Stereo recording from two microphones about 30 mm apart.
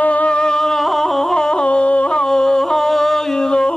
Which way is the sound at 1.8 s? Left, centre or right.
Left.